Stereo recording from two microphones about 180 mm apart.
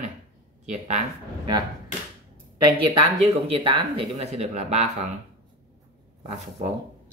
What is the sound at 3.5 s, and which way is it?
Speech, 30° right (ahead or behind).